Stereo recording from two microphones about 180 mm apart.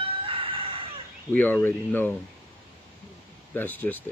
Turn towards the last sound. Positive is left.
turn(degrees=10)  # may be behind; listen again after turning